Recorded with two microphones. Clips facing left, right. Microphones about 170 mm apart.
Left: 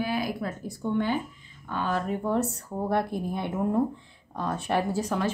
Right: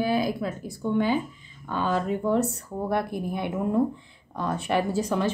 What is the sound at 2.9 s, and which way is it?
Speech, 10° right (ahead or behind).